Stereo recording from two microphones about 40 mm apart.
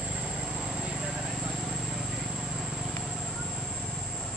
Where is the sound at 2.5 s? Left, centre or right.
Centre.